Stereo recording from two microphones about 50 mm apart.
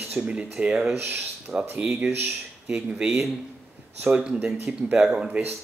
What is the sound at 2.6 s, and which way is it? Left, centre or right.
Speech, right.